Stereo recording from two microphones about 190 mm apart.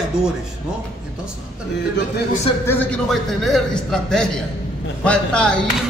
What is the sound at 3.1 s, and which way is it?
A man's voice, centre (ahead or behind).